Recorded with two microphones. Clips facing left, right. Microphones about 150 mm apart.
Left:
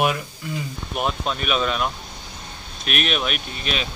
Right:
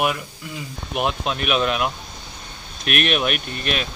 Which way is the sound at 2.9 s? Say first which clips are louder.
Right 3 dB; 55° right (ahead or behind).